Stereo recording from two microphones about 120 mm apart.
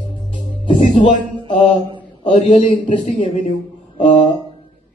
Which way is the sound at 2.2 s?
50° left (ahead or behind).